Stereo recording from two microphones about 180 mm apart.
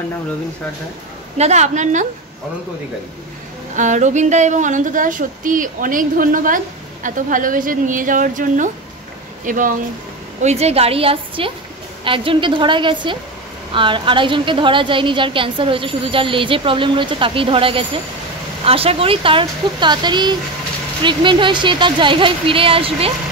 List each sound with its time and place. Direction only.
1.4 s a woman's voice: 40° right (ahead or behind)
3.7 s speech: 45° right (ahead or behind)
10.4 s a woman's voice: 35° right (ahead or behind)